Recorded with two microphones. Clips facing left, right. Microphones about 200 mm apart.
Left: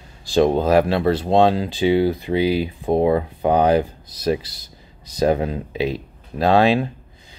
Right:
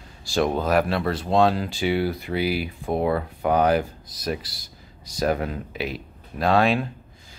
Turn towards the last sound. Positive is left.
turn(degrees=25)  # may be behind; listen again after turning